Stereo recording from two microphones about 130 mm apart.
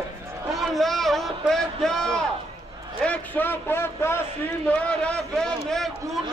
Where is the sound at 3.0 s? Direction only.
15° left (ahead or behind).